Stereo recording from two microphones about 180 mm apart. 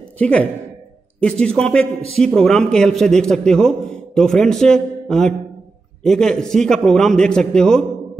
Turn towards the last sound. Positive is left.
turn(degrees=5)  # may be behind; listen again after turning